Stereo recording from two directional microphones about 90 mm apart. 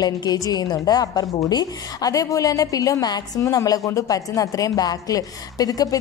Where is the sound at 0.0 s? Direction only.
50° left (ahead or behind).